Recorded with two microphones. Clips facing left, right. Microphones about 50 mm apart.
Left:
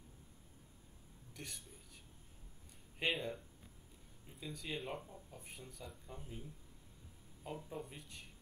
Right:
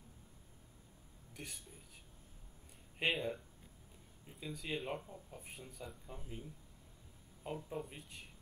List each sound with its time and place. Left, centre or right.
1.3 s speech: centre
3.1 s speech: centre
7.4 s speech: centre